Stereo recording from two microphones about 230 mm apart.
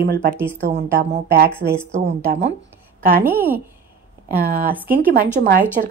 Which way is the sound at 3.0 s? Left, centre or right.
Right.